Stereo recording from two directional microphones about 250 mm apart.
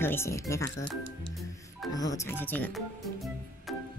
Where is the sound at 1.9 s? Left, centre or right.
Centre.